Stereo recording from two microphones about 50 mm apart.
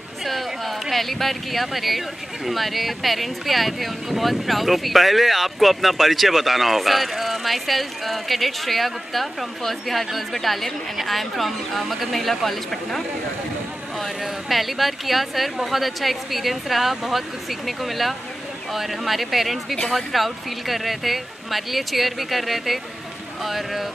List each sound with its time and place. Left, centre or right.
0.2 s speech: centre